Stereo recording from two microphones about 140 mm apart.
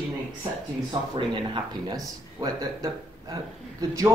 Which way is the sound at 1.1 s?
35° right (ahead or behind).